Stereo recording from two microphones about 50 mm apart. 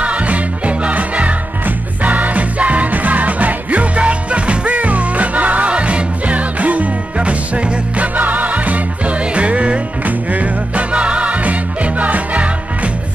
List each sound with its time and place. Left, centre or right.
0.0 s music: right